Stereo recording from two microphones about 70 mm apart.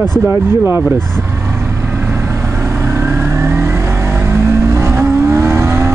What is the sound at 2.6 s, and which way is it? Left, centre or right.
Vehicle, right.